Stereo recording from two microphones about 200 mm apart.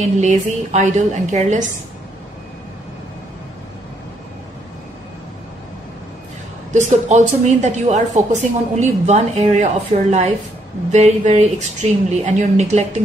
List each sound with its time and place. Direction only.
0.2 s a woman's voice: 35° right (ahead or behind)
6.7 s a woman's voice: 35° right (ahead or behind)